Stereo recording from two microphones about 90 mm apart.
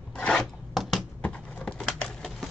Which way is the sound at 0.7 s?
Centre (ahead or behind).